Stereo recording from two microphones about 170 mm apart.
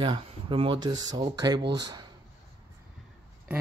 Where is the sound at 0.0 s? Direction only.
30° right (ahead or behind).